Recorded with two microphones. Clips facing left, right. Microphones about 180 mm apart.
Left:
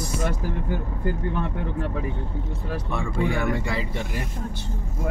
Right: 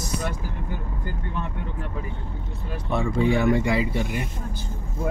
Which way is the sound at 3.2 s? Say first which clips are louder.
Right 6 dB; 20° right (ahead or behind).